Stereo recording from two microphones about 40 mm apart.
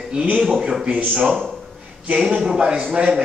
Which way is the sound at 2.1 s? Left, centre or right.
Right.